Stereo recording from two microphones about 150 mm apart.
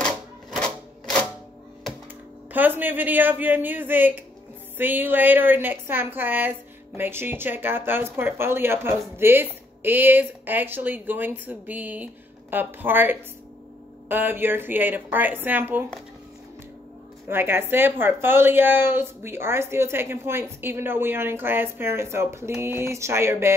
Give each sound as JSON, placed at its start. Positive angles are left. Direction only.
{"t": 2.5, "sound": "speech", "side_deg": -10}
{"t": 17.3, "sound": "speech", "side_deg": -15}